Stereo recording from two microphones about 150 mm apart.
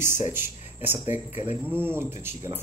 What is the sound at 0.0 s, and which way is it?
Speech, 15° right (ahead or behind).